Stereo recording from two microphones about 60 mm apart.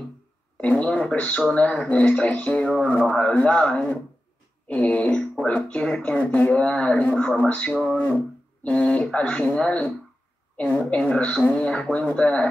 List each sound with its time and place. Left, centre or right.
0.6 s speech: left
3.2 s a man's voice: centre
10.9 s speech: centre